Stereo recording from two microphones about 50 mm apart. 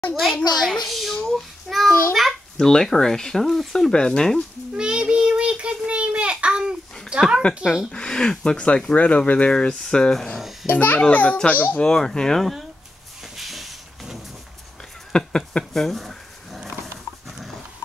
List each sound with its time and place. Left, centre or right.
0.1 s a child's voice: centre
3.9 s speech: centre
4.7 s child singing: centre
5.9 s babbling: right
7.6 s speech: centre
7.9 s speech: centre
10.7 s a child's voice: left
11.8 s speech: centre
13.4 s hiss: centre
15.1 s speech: centre